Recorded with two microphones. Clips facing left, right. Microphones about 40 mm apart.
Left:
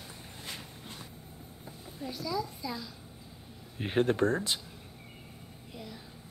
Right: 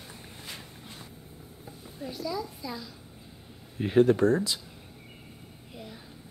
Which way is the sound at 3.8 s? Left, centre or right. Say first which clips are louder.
Right 6 dB; left.